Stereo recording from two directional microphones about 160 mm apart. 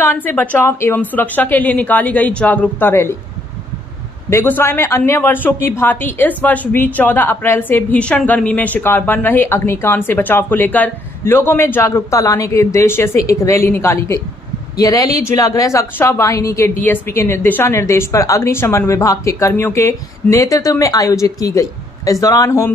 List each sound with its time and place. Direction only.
0.0 s speech: 15° left (ahead or behind)
4.3 s a woman's voice: 15° left (ahead or behind)